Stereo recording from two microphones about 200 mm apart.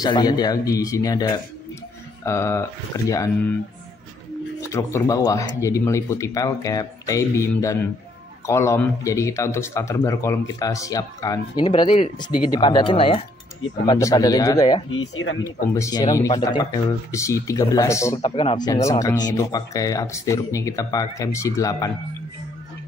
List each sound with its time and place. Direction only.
0.0 s a man's voice: 20° left (ahead or behind)
4.6 s a man's voice: 15° left (ahead or behind)
14.9 s speech: 85° left
15.4 s speech: 15° left (ahead or behind)